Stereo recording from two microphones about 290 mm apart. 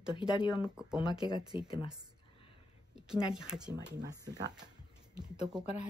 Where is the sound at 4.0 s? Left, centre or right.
Centre.